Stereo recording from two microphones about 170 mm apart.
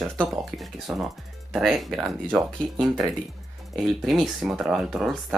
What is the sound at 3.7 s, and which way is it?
Speech, centre (ahead or behind).